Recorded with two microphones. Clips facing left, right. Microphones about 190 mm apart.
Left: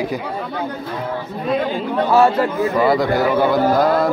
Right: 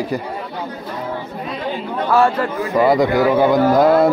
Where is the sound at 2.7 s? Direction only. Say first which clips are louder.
Right 4 dB; 20° right (ahead or behind).